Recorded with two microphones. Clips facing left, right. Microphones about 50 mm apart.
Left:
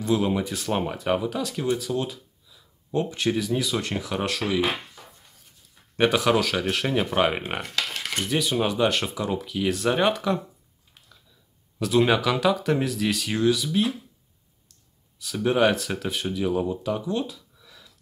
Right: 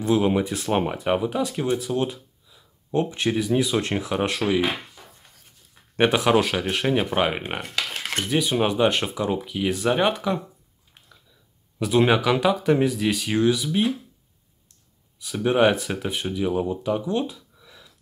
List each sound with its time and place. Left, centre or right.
0.0 s speech: centre
5.9 s speech: centre
11.8 s speech: centre
15.1 s speech: centre